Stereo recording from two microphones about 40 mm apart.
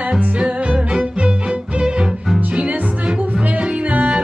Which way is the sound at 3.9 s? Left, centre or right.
Right.